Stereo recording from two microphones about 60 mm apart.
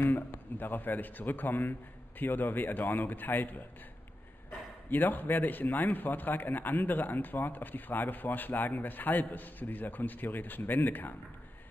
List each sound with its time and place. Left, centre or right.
0.0 s a man's voice: left